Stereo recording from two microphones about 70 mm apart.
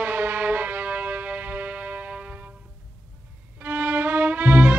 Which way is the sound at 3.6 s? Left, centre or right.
Right.